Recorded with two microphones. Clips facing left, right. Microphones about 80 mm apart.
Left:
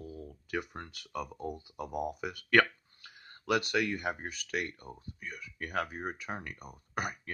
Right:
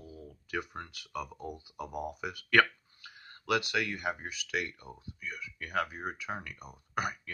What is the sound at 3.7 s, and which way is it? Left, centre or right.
Speech, left.